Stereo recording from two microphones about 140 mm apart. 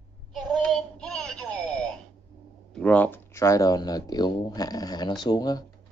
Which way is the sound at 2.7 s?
10° left (ahead or behind).